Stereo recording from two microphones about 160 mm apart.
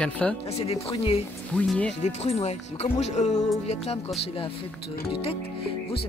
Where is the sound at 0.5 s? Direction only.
40° left (ahead or behind).